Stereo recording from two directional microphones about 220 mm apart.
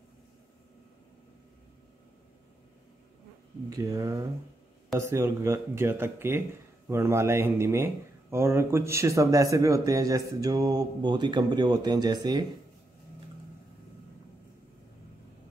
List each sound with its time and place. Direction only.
3.7 s speech: 15° right (ahead or behind)